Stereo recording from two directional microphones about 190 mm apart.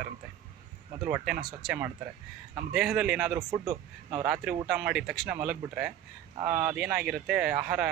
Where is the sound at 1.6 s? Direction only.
5° right (ahead or behind).